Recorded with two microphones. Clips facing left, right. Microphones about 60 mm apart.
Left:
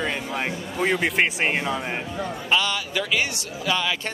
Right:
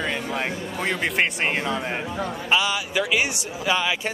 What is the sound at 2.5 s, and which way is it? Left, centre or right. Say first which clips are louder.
Speech: right 1 dB; centre.